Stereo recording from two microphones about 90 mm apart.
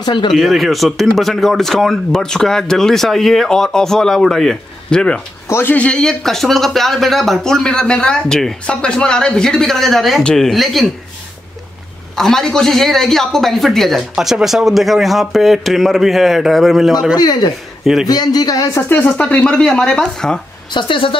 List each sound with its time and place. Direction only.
0.0 s speech: 60° left (ahead or behind)
0.3 s speech: centre (ahead or behind)
5.5 s speech: 20° left (ahead or behind); by 10.9 s centre (ahead or behind)
12.2 s speech: 5° left (ahead or behind)
17.1 s speech: 50° left (ahead or behind); by 18.9 s 30° left (ahead or behind)
18.9 s speech: 15° left (ahead or behind)
20.7 s a woman's voice: 70° left (ahead or behind)